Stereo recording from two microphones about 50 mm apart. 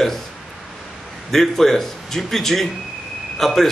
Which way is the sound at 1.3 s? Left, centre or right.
Centre.